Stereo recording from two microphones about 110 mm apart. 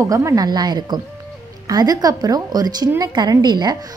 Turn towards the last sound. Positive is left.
turn(degrees=-40)  # may be behind; listen again after turning